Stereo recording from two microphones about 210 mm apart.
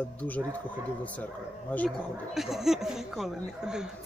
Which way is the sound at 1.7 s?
5° left (ahead or behind).